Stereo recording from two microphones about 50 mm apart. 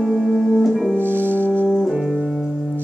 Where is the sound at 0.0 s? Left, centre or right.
Centre.